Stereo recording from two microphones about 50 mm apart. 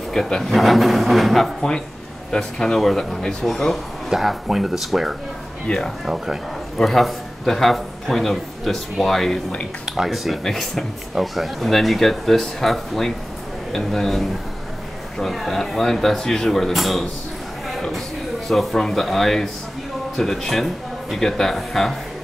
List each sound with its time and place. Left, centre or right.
0.1 s speech: centre
2.3 s speech: centre
4.1 s speech: centre
5.7 s speech: centre
6.0 s a man's voice: centre
9.8 s speech: centre
10.4 s speech: centre
17.6 s a sound: centre
18.5 s speech: centre